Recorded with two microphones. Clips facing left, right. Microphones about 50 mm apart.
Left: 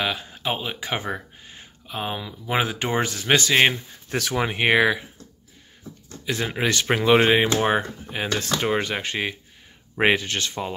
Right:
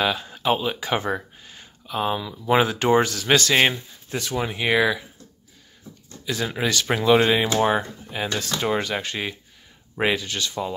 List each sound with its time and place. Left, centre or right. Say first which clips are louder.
0.0 s speech: right 3 dB; centre
1.4 s a sound: even; centre
2.4 s speech: right 5 dB; centre
4.2 s speech: left 2 dB; left
4.6 s speech: left 2 dB; left
6.2 s speech: left 1 dB; left
9.9 s speech: left 3 dB; left